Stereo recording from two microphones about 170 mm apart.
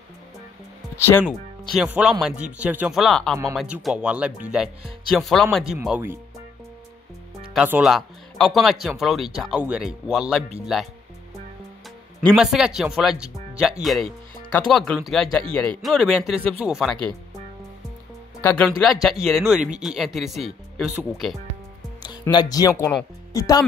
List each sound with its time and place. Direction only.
0.9 s speech: 15° left (ahead or behind)
1.7 s speech: 5° right (ahead or behind)
5.9 s speech: 15° right (ahead or behind)
7.5 s speech: 5° right (ahead or behind)
12.4 s speech: 5° right (ahead or behind)
16.3 s speech: 35° right (ahead or behind)
16.6 s speech: centre (ahead or behind)
18.6 s speech: centre (ahead or behind)
22.0 s speech: 25° left (ahead or behind)